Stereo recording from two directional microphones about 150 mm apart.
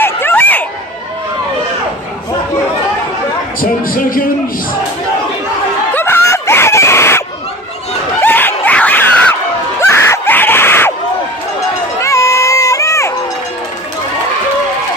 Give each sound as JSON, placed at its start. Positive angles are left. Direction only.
{"t": 0.0, "sound": "a sound", "side_deg": 15}
{"t": 3.6, "sound": "speech", "side_deg": 70}
{"t": 5.9, "sound": "screaming", "side_deg": 15}
{"t": 12.0, "sound": "run", "side_deg": 20}